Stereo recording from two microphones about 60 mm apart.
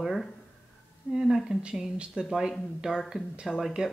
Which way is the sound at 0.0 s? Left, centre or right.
Centre.